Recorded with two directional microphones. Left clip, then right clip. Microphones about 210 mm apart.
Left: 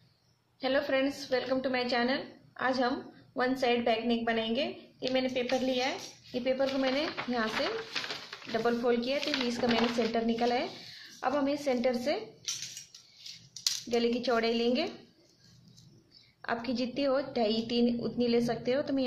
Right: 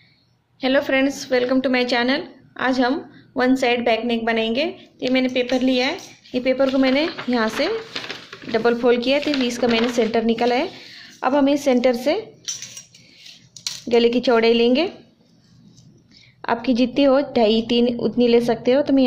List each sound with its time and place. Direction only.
0.6 s a woman's voice: 40° right (ahead or behind)
13.8 s speech: 40° right (ahead or behind)
16.3 s speech: 35° right (ahead or behind)